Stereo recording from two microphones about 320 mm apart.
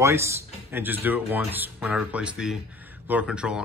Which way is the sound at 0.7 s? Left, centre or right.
Centre.